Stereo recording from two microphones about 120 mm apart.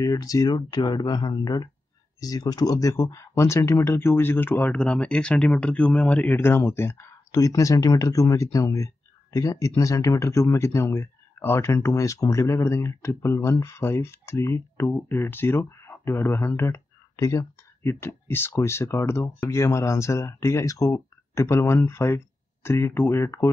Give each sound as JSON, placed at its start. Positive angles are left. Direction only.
{"t": 0.0, "sound": "speech", "side_deg": 30}